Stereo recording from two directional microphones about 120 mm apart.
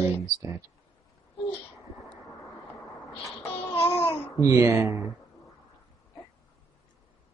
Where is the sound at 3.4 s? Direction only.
25° left (ahead or behind).